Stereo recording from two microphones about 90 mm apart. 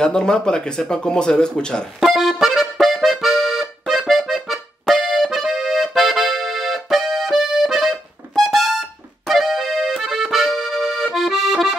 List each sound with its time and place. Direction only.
0.0 s speech: 10° left (ahead or behind)
2.0 s accordion: centre (ahead or behind)